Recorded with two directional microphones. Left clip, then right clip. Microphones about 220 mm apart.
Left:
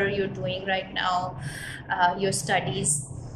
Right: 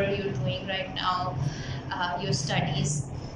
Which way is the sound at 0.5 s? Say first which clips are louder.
Left 3 dB; 40° left (ahead or behind).